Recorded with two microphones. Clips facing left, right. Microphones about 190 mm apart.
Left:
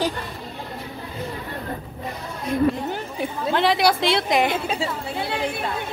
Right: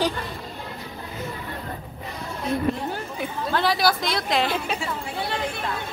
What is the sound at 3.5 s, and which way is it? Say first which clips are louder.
A woman's voice: left 3 dB; 20° left (ahead or behind).